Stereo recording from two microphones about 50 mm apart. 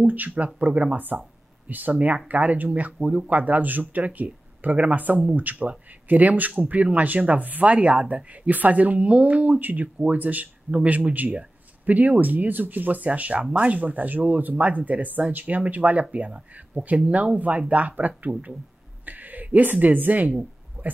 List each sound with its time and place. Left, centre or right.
0.0 s speech: right